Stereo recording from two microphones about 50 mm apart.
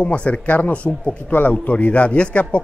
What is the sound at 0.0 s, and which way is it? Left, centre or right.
A man's voice, left.